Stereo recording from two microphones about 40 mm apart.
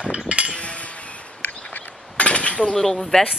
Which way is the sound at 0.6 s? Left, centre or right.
Left.